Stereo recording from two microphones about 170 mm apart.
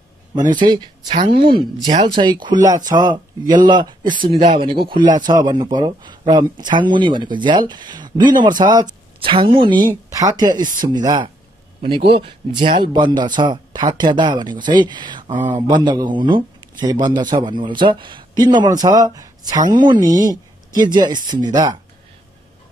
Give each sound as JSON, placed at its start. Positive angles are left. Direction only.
{"t": 0.5, "sound": "a man's voice", "side_deg": -25}